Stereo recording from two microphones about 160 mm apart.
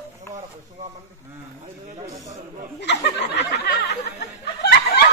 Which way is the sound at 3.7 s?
90° left.